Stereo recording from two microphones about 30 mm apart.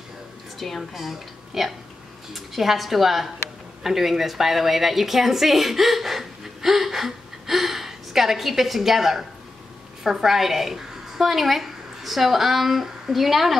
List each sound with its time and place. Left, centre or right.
0.6 s speech: centre
0.9 s a woman's voice: centre